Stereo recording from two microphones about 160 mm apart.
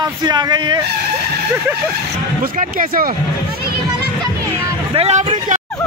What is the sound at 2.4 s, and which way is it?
Speech, 60° right (ahead or behind).